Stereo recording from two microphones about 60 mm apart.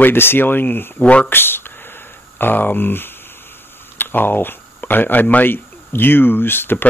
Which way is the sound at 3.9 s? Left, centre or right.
Left.